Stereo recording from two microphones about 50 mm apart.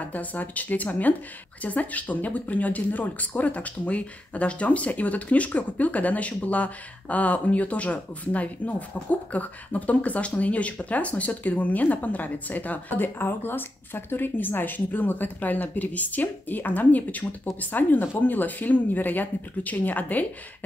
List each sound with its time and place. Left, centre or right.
0.1 s speech: left